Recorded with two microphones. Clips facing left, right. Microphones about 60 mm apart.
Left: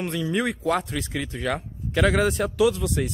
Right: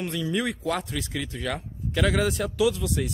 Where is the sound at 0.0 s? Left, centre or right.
Left.